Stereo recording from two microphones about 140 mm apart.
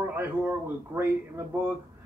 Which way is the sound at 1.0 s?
15° right (ahead or behind).